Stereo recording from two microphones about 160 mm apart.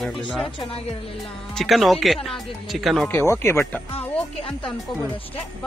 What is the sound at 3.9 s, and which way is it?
Speech, 35° left (ahead or behind).